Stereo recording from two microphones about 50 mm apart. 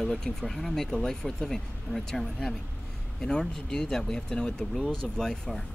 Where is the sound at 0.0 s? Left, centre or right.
Centre.